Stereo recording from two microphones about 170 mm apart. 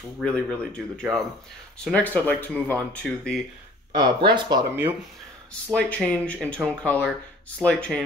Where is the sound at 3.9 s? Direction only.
25° right (ahead or behind).